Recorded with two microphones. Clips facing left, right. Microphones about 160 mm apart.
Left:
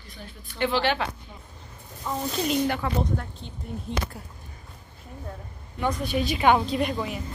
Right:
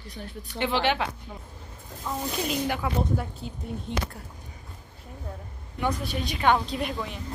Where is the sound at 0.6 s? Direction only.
20° right (ahead or behind).